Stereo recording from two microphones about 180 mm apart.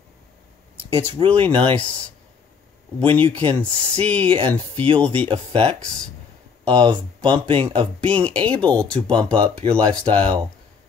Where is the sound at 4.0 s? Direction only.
5° left (ahead or behind).